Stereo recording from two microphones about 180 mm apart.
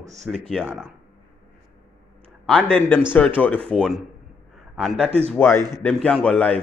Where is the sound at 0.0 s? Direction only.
40° right (ahead or behind).